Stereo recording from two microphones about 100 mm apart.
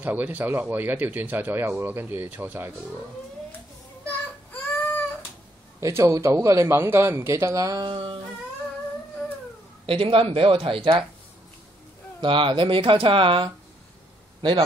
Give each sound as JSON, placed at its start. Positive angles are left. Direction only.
{"t": 0.0, "sound": "speech", "side_deg": -20}
{"t": 4.7, "sound": "a sound", "side_deg": 20}
{"t": 5.8, "sound": "speech", "side_deg": -30}
{"t": 7.8, "sound": "speech", "side_deg": -60}
{"t": 9.8, "sound": "speech", "side_deg": -65}
{"t": 12.2, "sound": "speech", "side_deg": -55}